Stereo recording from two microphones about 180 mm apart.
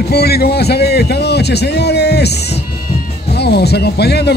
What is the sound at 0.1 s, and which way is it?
Speech, 60° left (ahead or behind).